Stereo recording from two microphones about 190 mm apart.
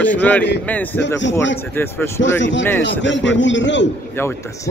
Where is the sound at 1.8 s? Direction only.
10° left (ahead or behind).